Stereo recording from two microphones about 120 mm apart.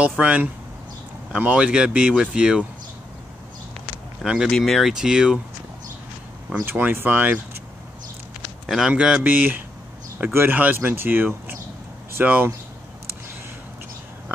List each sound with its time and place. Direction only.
0.2 s speech: 10° right (ahead or behind)
4.2 s speech: 5° right (ahead or behind)
6.6 s speech: 15° right (ahead or behind)
8.6 s speech: 5° right (ahead or behind)